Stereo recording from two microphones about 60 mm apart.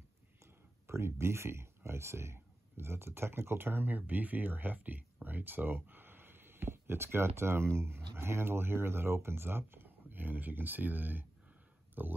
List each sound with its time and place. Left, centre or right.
0.4 s speech: right